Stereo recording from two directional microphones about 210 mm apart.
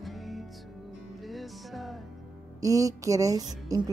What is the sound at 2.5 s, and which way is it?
Speech, 15° right (ahead or behind).